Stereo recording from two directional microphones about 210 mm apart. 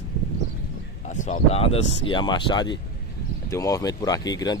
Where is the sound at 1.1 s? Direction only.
30° left (ahead or behind).